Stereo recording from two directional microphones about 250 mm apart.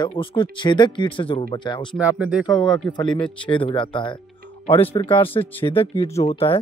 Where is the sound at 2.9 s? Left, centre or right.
Centre.